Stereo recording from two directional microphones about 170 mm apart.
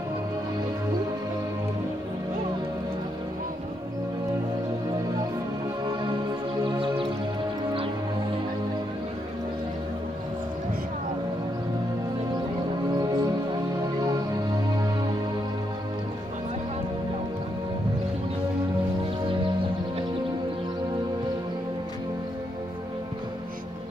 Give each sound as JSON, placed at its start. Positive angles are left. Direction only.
{"t": 6.6, "sound": "music", "side_deg": -30}
{"t": 13.0, "sound": "music", "side_deg": -25}